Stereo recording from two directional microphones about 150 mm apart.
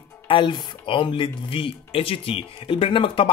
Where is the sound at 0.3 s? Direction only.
35° left (ahead or behind).